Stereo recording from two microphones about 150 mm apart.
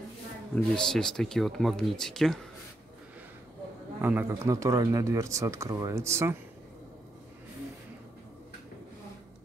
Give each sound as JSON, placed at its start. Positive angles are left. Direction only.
{"t": 0.6, "sound": "speech", "side_deg": 5}
{"t": 4.0, "sound": "speech", "side_deg": -15}